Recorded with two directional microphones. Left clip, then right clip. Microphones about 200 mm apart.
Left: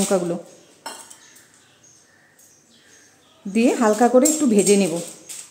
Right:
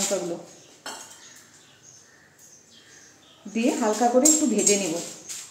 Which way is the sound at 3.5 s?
60° left (ahead or behind).